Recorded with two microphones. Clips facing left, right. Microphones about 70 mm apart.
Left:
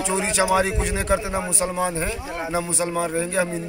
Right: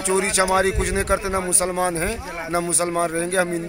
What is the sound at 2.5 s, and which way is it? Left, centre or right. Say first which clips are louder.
Speech: right 3 dB; right.